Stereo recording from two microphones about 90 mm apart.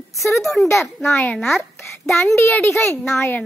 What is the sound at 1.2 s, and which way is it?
Speech, 15° left (ahead or behind).